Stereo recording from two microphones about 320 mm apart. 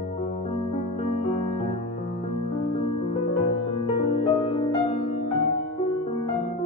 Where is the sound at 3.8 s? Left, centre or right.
Centre.